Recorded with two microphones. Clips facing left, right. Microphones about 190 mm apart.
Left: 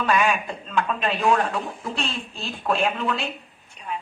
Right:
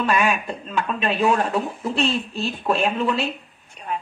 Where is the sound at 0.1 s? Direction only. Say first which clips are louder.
Right 1 dB; centre (ahead or behind).